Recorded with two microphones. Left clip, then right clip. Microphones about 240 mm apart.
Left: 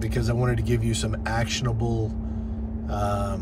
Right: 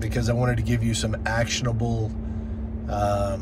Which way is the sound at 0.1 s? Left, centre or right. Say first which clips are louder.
Right 3 dB; centre.